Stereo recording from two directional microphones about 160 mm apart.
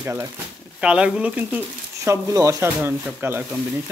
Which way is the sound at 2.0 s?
20° right (ahead or behind).